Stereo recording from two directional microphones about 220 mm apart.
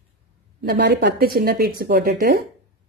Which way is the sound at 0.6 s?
45° right (ahead or behind).